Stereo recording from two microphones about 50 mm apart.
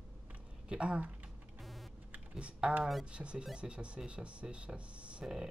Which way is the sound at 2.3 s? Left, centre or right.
Centre.